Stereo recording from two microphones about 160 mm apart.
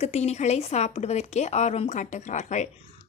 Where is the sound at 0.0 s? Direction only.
45° left (ahead or behind).